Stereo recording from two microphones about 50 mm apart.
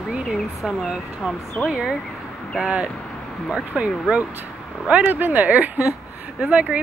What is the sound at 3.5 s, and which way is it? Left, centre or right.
Speech, right.